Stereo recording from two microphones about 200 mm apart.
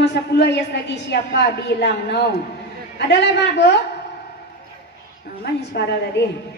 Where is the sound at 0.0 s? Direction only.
60° left (ahead or behind).